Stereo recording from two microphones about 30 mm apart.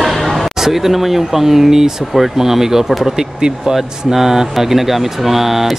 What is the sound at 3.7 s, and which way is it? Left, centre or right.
Speech, centre.